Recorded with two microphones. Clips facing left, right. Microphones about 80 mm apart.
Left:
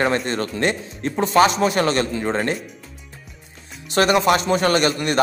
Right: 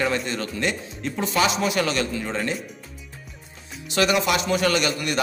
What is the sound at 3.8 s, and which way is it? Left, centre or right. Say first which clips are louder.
Speech: left 5 dB; left.